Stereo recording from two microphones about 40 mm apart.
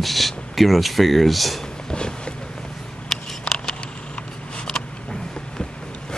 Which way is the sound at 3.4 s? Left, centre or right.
Centre.